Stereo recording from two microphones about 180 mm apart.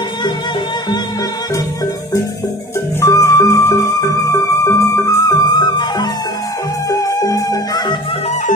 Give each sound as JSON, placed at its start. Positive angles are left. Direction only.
{"t": 3.0, "sound": "music", "side_deg": 15}